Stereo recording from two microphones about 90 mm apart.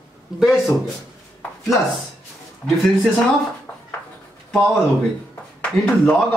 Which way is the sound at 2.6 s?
Centre (ahead or behind).